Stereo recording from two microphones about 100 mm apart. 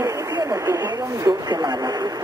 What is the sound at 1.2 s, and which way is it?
Speech, 45° right (ahead or behind).